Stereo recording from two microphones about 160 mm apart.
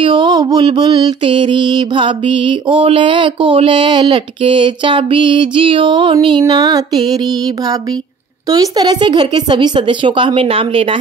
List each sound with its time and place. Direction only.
0.0 s mantra: 30° right (ahead or behind)
6.2 s music: 30° right (ahead or behind)
8.5 s mantra: 25° right (ahead or behind)